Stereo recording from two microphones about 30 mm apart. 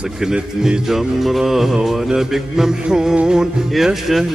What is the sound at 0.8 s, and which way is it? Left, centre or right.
Mantra, centre.